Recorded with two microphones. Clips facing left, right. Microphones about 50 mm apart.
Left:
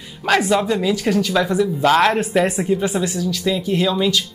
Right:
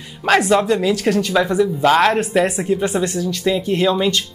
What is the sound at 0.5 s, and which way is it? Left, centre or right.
Speech, centre.